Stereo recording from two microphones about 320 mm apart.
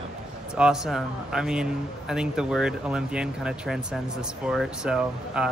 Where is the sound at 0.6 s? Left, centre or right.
Centre.